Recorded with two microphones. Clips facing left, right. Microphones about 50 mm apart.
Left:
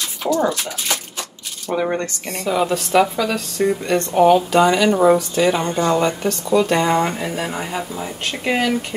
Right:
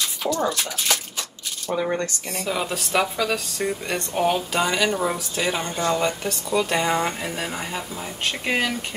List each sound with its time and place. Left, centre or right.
0.2 s speech: centre
2.4 s speech: centre
4.9 s speech: centre
5.4 s speech: centre
8.3 s speech: centre